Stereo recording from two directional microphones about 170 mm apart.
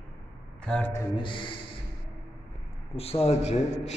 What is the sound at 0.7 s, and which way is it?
Speech, 5° left (ahead or behind).